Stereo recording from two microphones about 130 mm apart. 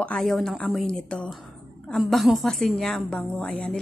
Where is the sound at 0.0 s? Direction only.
5° left (ahead or behind).